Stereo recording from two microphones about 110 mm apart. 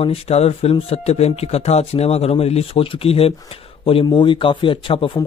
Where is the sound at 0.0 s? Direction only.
70° left (ahead or behind).